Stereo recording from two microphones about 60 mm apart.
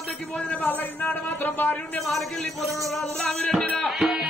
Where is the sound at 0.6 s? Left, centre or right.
Left.